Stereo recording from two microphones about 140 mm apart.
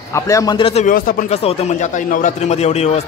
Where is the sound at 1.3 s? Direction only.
45° left (ahead or behind).